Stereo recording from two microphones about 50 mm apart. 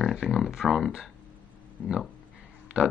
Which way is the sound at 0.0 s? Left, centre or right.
Centre.